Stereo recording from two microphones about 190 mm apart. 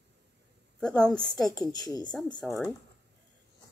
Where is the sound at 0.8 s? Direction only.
5° left (ahead or behind).